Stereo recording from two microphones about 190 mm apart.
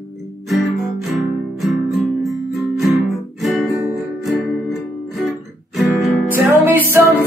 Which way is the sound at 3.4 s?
Centre (ahead or behind).